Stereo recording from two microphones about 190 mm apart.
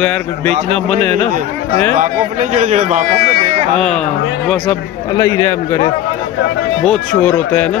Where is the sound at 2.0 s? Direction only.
40° right (ahead or behind).